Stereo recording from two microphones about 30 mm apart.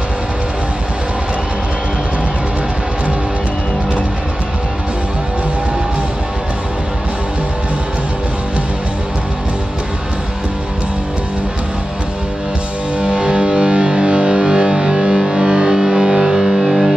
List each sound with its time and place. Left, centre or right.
13.0 s music: right
16.3 s music: centre